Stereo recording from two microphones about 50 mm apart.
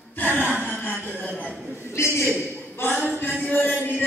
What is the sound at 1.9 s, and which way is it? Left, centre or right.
Speech, left.